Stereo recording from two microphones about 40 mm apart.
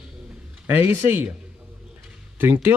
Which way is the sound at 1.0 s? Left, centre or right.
Right.